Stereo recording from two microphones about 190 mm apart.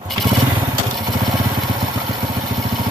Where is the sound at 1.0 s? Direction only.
Centre (ahead or behind).